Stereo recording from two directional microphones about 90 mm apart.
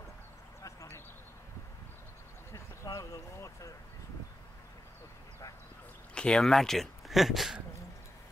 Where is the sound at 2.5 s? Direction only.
35° left (ahead or behind).